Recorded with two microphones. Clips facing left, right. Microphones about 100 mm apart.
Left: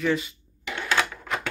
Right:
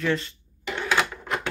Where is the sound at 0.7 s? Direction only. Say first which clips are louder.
Right 1 dB; 5° right (ahead or behind).